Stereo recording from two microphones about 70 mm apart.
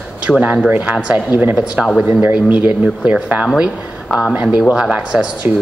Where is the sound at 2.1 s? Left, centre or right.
Right.